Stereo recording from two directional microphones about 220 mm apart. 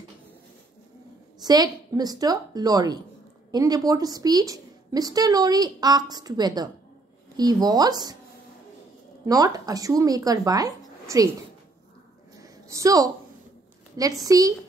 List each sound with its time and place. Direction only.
1.4 s a woman's voice: 15° right (ahead or behind)
9.2 s speech: 15° right (ahead or behind)
12.4 s a sound: 15° right (ahead or behind)
14.2 s a woman's voice: 15° right (ahead or behind)